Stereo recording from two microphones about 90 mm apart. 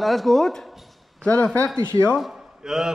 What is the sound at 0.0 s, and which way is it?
Speech, centre (ahead or behind).